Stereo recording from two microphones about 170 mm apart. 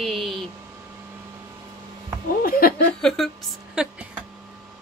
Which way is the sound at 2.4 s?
60° left (ahead or behind).